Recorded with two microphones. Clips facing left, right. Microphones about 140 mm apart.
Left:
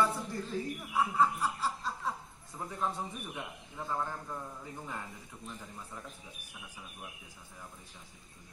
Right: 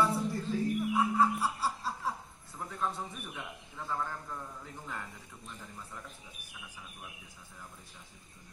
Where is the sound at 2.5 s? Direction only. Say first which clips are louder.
Left 1 dB; 10° left (ahead or behind).